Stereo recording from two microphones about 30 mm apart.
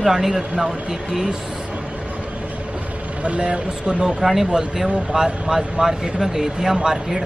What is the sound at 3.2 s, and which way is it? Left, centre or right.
Speech, right.